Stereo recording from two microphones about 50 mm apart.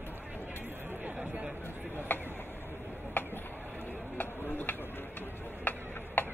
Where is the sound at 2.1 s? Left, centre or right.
Left.